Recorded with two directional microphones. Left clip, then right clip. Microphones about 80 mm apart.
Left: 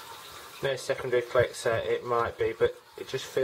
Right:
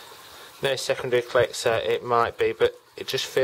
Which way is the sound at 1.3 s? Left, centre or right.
Right.